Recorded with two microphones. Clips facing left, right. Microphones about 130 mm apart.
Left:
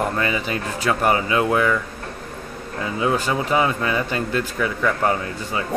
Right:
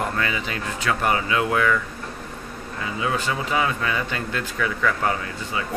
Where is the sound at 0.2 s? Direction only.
30° left (ahead or behind).